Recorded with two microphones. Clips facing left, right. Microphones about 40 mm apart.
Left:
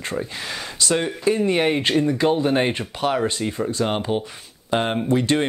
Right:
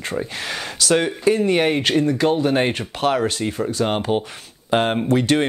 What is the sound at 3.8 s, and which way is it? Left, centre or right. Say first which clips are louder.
Speech: right 3 dB; centre.